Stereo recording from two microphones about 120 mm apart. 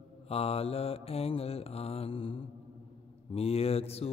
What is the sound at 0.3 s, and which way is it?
Mantra, 55° left (ahead or behind).